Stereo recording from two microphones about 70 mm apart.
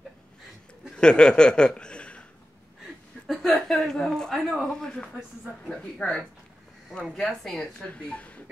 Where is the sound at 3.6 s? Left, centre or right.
Centre.